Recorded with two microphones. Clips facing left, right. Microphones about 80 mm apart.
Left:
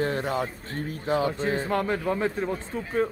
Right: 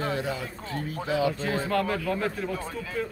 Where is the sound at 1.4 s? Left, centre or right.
Left.